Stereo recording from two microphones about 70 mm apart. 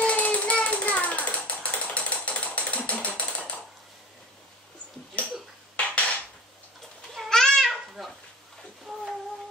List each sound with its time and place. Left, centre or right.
0.0 s a sound: centre
1.5 s ratchet: centre
3.2 s typewriter: centre
5.2 s a sound: left
5.8 s dishes: centre
7.2 s babbling: centre